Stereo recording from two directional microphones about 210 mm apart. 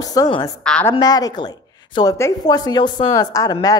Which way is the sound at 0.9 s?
20° left (ahead or behind).